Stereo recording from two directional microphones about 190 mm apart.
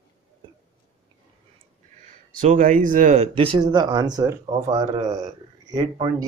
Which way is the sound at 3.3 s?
30° right (ahead or behind).